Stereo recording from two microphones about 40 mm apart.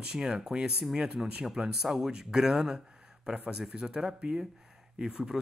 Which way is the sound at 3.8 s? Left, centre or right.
Right.